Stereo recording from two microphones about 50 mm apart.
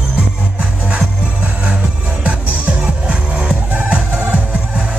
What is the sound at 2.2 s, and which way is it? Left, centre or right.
Music, right.